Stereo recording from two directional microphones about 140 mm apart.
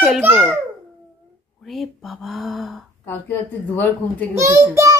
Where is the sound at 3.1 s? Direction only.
15° left (ahead or behind).